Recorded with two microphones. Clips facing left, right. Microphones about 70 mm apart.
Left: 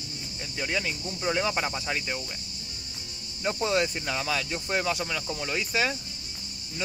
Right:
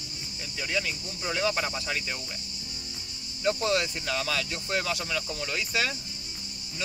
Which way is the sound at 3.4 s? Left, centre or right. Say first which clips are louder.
Even; centre.